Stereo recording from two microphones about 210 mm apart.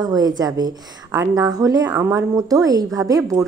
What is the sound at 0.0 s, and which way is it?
A woman's voice, 20° right (ahead or behind).